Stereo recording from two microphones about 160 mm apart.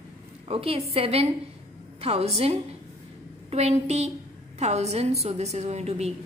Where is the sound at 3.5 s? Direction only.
40° right (ahead or behind).